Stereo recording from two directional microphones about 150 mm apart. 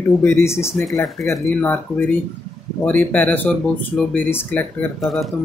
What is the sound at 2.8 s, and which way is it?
Speech, 10° left (ahead or behind).